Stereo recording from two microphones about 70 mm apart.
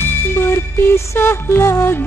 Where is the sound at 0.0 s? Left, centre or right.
Left.